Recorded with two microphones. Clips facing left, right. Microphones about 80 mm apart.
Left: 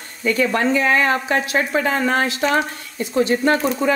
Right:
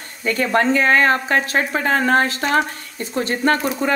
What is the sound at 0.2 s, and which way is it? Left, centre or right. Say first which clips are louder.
Speech: even; right.